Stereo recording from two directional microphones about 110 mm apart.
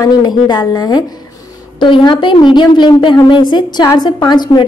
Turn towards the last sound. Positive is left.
turn(degrees=40)  # may be behind; listen again after turning